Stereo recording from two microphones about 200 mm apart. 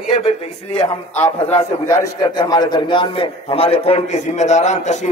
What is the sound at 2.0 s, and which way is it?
A man's voice, 20° left (ahead or behind).